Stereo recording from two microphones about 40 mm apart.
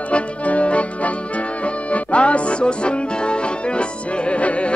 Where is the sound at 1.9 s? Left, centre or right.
Left.